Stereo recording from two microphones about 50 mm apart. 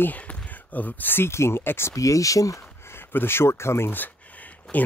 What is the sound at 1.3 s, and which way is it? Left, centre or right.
Speech, left.